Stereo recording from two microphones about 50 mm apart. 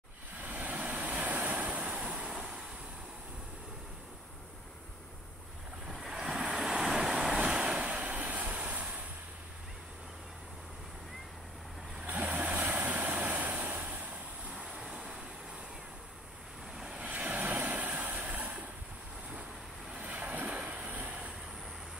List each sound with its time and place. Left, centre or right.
0.4 s waves: right
2.3 s vehicle: centre
5.9 s vehicle: centre; by 9.0 s right
12.1 s vehicle: right; by 15.2 s centre
16.9 s vehicle: right
20.0 s vehicle: right